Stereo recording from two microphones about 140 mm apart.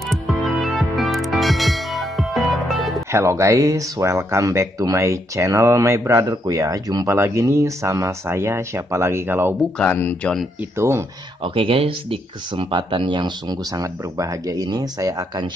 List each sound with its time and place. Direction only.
0.1 s music: centre (ahead or behind)
3.1 s speech: 20° right (ahead or behind)
9.8 s speech: 10° left (ahead or behind)
10.6 s speech: 20° right (ahead or behind)
11.4 s speech: 40° right (ahead or behind)